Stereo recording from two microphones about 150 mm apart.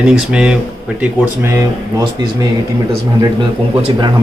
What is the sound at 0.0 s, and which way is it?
Speech, 5° right (ahead or behind).